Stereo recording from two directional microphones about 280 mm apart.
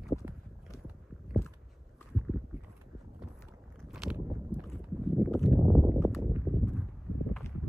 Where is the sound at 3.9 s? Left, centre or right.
Centre.